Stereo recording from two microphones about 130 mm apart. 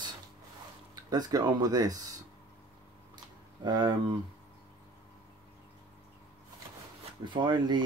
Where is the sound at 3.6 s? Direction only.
30° right (ahead or behind).